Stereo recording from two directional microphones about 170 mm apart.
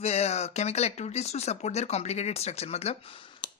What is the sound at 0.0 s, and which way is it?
Speech, 40° left (ahead or behind).